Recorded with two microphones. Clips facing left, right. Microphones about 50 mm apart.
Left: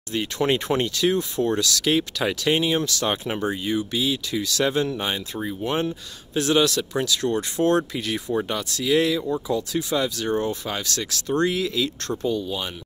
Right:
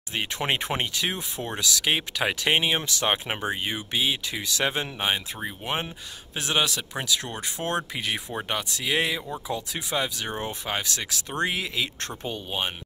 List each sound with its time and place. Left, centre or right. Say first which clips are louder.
0.1 s speech: left 5 dB; right
12.3 s speech: left 4 dB; right